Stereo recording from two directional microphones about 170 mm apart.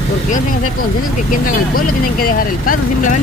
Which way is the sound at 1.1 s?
50° left (ahead or behind).